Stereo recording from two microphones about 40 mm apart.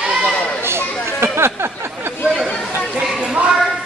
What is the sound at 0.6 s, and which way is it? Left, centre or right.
Chatter, right.